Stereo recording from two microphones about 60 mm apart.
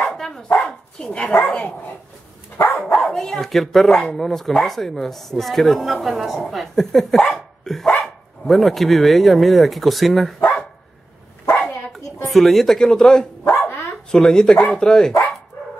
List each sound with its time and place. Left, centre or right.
0.0 s dog: centre
2.5 s dog: left
3.1 s speech: centre
7.6 s dog: centre
8.0 s speech: centre
12.3 s speech: centre